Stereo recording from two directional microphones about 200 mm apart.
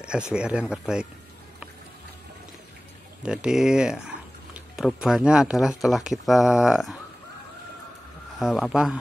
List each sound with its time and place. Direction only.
0.0 s speech: 5° right (ahead or behind)
3.3 s speech: 5° right (ahead or behind)
8.4 s speech: centre (ahead or behind)